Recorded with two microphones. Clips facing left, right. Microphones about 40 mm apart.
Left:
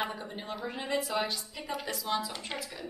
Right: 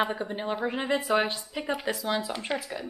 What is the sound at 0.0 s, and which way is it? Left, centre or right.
A woman's voice, right.